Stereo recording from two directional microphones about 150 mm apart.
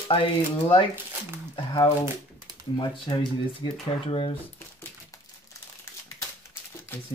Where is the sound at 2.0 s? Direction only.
20° right (ahead or behind).